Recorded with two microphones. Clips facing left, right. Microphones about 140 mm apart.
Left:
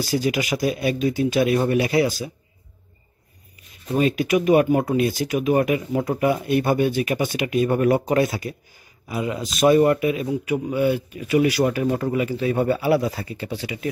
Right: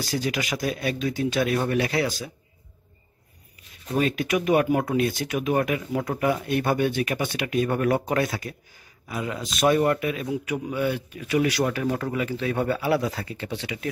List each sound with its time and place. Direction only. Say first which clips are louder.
0.0 s speech: left 5 dB; 5° left (ahead or behind)
3.9 s a man's voice: left 4 dB; 5° left (ahead or behind)